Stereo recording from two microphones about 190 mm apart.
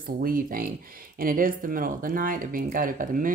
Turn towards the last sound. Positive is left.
turn(degrees=-45)  # may be behind; listen again after turning